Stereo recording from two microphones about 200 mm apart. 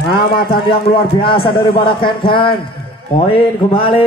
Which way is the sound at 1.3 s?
25° left (ahead or behind).